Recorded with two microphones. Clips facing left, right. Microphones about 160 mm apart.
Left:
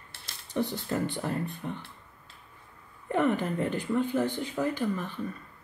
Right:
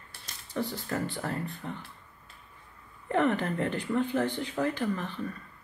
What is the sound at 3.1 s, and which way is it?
Speech, 10° left (ahead or behind).